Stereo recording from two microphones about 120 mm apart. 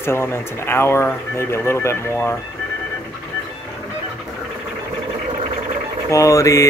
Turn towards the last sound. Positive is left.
turn(degrees=25)  # may be behind; listen again after turning